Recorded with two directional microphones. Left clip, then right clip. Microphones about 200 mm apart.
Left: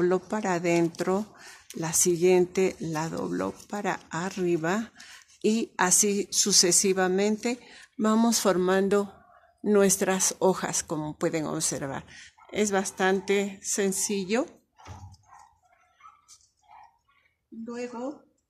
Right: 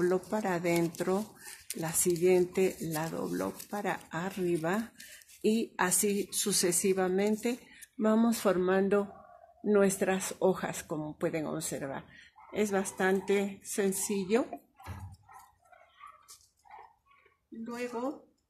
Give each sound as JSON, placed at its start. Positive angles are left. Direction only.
{"t": 0.0, "sound": "speech", "side_deg": 35}